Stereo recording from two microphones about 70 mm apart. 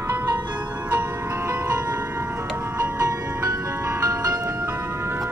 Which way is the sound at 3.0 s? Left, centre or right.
Right.